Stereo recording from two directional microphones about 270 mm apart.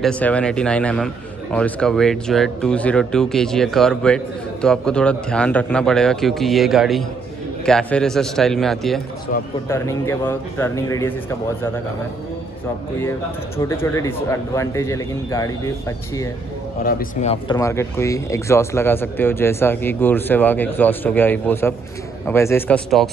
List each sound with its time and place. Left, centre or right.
0.0 s a man's voice: centre
13.7 s speech: centre
16.8 s speech: left
17.6 s speech: centre